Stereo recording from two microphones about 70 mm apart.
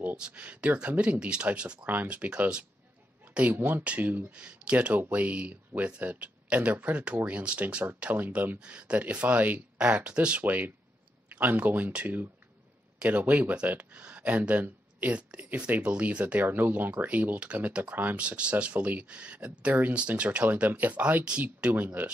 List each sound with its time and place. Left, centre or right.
0.0 s speech: centre